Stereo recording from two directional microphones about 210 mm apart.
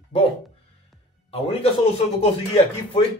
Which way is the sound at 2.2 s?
30° left (ahead or behind).